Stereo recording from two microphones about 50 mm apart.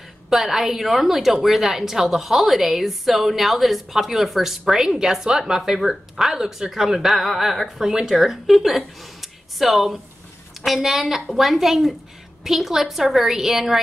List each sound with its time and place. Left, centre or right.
0.3 s a woman's voice: centre
7.9 s speech: centre
8.2 s a woman's voice: centre